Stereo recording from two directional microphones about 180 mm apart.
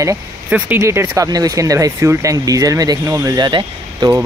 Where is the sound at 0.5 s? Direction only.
10° right (ahead or behind).